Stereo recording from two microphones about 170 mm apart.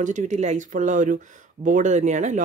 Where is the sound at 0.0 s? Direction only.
45° right (ahead or behind).